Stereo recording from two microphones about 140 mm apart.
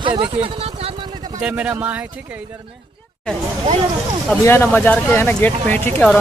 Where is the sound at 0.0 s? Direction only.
35° right (ahead or behind).